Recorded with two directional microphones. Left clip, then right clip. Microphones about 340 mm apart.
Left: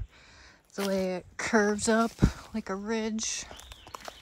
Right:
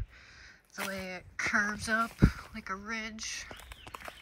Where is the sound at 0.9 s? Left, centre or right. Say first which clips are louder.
Left 8 dB; centre.